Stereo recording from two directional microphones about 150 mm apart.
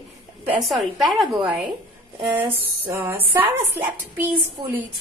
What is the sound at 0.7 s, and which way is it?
A woman's voice, centre (ahead or behind).